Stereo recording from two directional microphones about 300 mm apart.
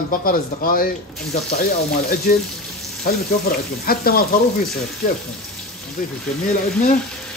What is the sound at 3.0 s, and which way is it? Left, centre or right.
Frying, left.